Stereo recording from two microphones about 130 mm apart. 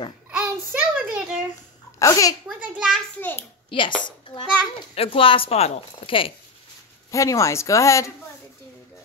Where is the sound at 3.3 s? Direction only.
40° left (ahead or behind).